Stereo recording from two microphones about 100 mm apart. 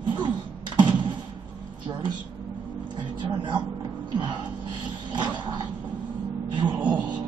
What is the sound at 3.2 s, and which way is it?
Vehicle, 50° right (ahead or behind).